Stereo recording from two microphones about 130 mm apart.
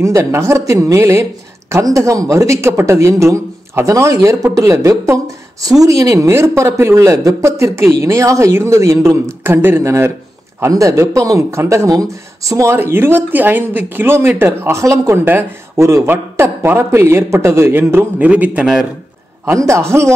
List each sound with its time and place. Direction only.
0.0 s speech: 20° right (ahead or behind); by 18.9 s 5° right (ahead or behind)
19.4 s speech: 20° right (ahead or behind)